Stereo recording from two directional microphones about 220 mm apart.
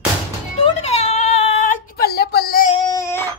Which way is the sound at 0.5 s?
25° left (ahead or behind).